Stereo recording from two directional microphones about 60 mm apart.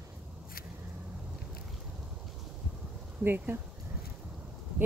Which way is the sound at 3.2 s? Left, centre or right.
Right.